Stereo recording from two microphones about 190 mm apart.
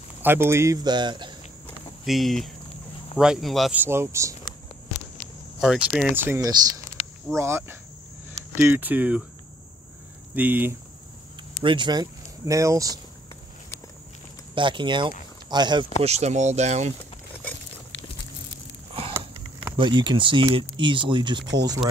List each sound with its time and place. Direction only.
0.2 s speech: 10° right (ahead or behind)
2.0 s speech: centre (ahead or behind)
5.9 s speech: 5° right (ahead or behind)
10.3 s speech: 10° right (ahead or behind)
11.6 s speech: 25° right (ahead or behind)
14.5 s speech: 25° right (ahead or behind)
16.0 s speech: 35° right (ahead or behind)
19.8 s speech: 25° right (ahead or behind)